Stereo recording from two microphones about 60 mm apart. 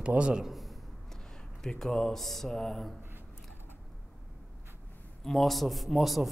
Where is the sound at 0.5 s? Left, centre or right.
Centre.